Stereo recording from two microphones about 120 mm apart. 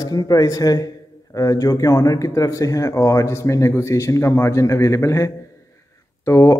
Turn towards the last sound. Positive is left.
turn(degrees=25)  # may be behind; listen again after turning